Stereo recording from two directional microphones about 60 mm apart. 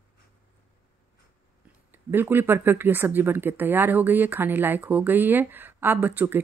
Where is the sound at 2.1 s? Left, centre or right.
Right.